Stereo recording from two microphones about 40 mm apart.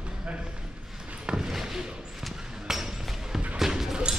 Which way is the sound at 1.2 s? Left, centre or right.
Centre.